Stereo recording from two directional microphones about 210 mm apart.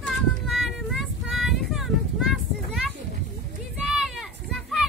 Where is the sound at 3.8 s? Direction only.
5° right (ahead or behind).